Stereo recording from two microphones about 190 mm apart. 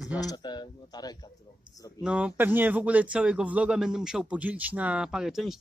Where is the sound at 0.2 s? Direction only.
20° left (ahead or behind).